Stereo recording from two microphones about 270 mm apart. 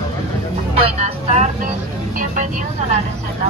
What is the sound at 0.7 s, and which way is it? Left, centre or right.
Vehicle, right.